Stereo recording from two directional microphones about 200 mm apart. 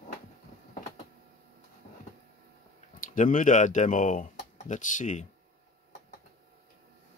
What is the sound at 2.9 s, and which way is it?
Speech, 40° left (ahead or behind).